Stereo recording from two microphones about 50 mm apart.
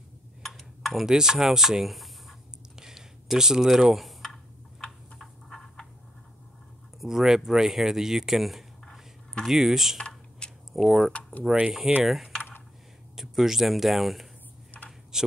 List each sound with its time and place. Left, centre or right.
0.4 s tick-tock: centre
1.0 s speech: centre
2.7 s computer keyboard: centre
5.2 s a sound: centre
7.0 s speech: centre
9.9 s typing: centre
10.7 s speech: centre
15.1 s a sound: centre